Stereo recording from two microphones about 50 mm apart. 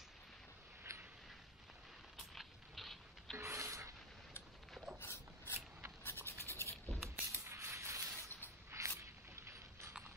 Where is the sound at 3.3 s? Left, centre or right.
Right.